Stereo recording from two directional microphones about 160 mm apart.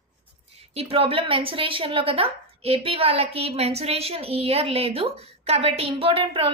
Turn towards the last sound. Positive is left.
turn(degrees=-35)  # may be behind; listen again after turning